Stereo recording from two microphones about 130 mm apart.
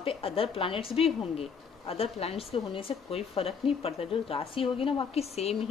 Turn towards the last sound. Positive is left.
turn(degrees=50)  # may be behind; listen again after turning